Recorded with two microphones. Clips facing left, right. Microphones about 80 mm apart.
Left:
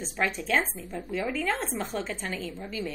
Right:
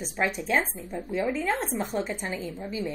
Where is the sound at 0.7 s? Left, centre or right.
Right.